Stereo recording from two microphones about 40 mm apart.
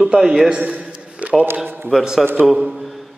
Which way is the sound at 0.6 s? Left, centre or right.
Right.